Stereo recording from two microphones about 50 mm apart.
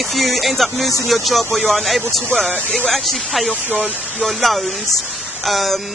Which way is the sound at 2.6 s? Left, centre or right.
Left.